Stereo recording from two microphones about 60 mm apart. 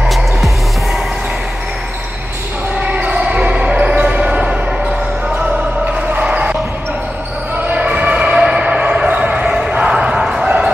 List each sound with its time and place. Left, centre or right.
2.8 s basketball bounce: right
5.9 s a sound: right
7.7 s basketball bounce: right